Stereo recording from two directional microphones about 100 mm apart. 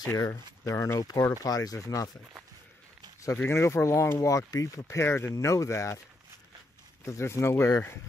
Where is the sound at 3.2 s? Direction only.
25° left (ahead or behind).